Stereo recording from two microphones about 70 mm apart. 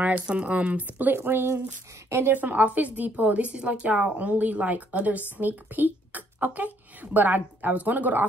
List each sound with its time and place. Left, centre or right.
0.0 s a woman's voice: centre